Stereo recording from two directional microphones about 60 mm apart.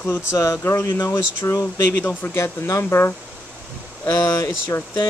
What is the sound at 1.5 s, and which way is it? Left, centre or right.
Speech, left.